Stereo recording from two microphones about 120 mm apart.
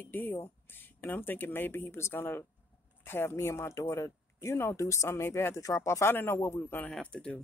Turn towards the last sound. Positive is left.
turn(degrees=10)  # may be behind; listen again after turning